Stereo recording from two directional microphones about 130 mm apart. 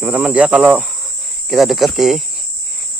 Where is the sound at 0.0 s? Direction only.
10° right (ahead or behind).